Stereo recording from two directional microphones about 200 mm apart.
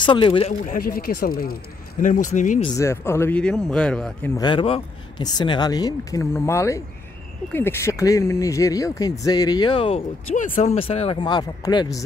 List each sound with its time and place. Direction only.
0.0 s speech: 25° left (ahead or behind)
0.5 s a man's voice: 45° left (ahead or behind)
2.8 s speech: 15° left (ahead or behind)
4.4 s speech: 25° left (ahead or behind)
10.3 s speech: 40° left (ahead or behind); by 12.0 s 20° left (ahead or behind)